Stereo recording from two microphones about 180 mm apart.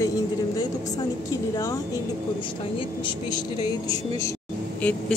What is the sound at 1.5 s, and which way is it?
Speech, 20° left (ahead or behind).